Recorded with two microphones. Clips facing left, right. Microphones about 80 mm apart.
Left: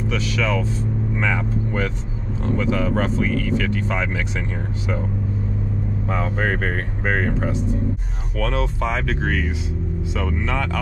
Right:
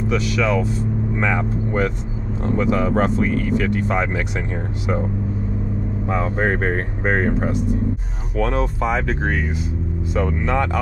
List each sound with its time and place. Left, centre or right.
0.1 s speech: right
6.4 s speech: right